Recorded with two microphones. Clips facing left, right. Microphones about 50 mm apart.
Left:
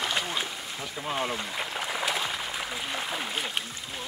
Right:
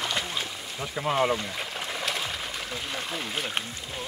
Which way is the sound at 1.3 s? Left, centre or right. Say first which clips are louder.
Right 2 dB; centre.